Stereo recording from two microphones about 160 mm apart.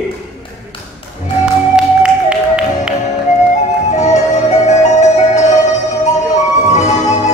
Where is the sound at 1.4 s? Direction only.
5° right (ahead or behind).